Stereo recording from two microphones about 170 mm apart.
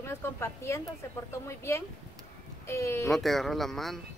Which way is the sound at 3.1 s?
Centre (ahead or behind).